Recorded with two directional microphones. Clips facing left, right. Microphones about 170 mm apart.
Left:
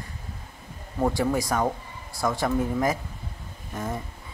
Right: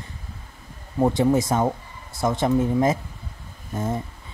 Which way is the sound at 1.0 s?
20° right (ahead or behind).